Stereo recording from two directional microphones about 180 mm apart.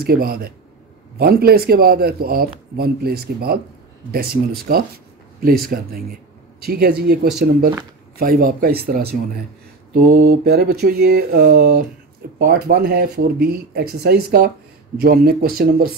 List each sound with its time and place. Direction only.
0.0 s speech: 55° right (ahead or behind)
4.6 s a sound: 55° right (ahead or behind)
5.7 s speech: 55° right (ahead or behind)